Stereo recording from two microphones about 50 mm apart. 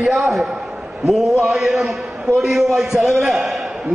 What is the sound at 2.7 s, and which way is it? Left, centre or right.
Speech, centre.